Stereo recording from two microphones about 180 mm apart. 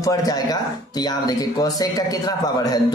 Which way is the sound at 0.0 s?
20° left (ahead or behind).